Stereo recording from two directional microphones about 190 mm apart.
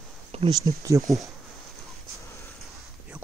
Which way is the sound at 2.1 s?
15° left (ahead or behind).